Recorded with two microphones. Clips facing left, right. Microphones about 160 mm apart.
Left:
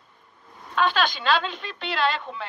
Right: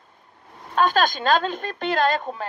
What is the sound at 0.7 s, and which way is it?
Speech, 45° right (ahead or behind).